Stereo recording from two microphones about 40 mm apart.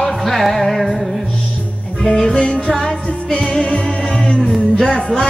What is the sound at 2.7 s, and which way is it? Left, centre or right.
Music, centre.